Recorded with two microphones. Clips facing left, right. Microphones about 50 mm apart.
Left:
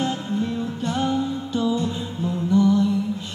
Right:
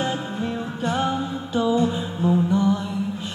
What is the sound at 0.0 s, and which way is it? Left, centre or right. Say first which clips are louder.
Music: left 1 dB; centre.